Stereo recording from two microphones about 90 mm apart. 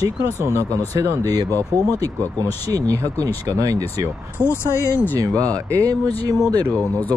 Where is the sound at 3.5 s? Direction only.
40° right (ahead or behind).